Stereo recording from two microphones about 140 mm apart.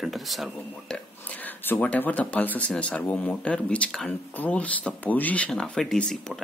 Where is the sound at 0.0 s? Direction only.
Centre (ahead or behind).